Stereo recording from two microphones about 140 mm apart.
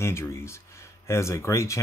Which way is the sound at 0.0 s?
20° left (ahead or behind).